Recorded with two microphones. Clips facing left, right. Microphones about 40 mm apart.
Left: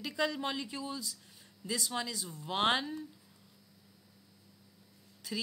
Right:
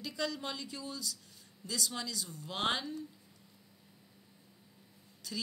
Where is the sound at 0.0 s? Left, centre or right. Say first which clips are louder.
Left 4 dB; centre.